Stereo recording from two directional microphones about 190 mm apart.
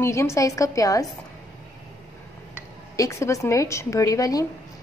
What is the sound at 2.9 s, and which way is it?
Speech, 15° left (ahead or behind).